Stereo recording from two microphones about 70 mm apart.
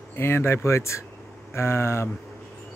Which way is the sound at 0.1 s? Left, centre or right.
Left.